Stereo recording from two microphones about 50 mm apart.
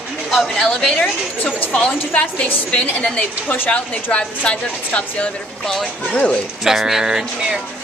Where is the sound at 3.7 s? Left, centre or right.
Left.